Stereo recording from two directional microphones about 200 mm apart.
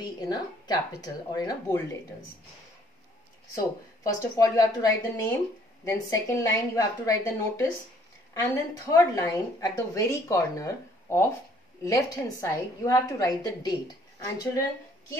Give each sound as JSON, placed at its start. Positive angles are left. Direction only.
{"t": 0.0, "sound": "speech", "side_deg": 20}
{"t": 3.5, "sound": "a woman's voice", "side_deg": 15}